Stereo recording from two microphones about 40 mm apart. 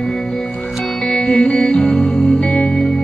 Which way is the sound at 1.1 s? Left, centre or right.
Centre.